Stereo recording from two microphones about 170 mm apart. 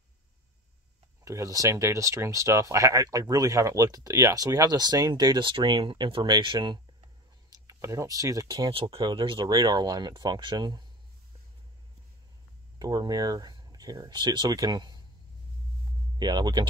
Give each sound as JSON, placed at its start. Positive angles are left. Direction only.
{"t": 1.2, "sound": "speech", "side_deg": -20}
{"t": 12.7, "sound": "speech", "side_deg": -25}
{"t": 16.2, "sound": "speech", "side_deg": -25}